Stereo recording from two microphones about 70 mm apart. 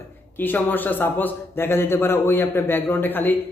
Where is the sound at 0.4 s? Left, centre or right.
Left.